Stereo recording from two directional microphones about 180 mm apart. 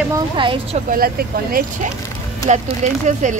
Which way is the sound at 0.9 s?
55° right (ahead or behind).